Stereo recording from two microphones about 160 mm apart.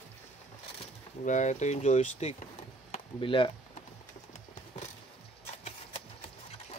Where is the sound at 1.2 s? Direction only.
50° left (ahead or behind).